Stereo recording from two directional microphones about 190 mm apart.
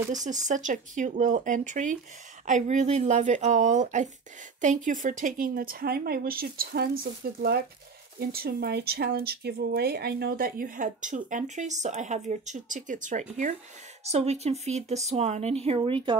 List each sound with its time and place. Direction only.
0.1 s speech: 40° right (ahead or behind)